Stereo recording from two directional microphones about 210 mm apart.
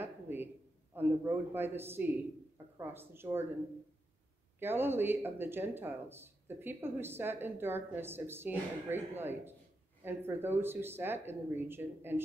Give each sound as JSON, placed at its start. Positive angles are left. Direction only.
{"t": 0.0, "sound": "a sound", "side_deg": -10}
{"t": 0.9, "sound": "speech", "side_deg": -10}
{"t": 4.6, "sound": "speech", "side_deg": -10}